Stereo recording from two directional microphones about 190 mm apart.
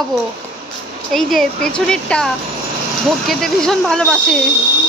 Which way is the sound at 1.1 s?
Centre (ahead or behind).